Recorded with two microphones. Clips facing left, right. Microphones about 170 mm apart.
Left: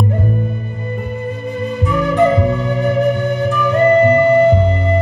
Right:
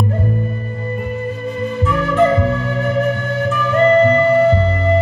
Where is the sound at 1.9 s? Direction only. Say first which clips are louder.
Left 1 dB; 20° left (ahead or behind).